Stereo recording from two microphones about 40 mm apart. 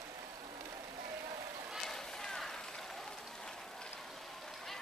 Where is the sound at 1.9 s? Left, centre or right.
Centre.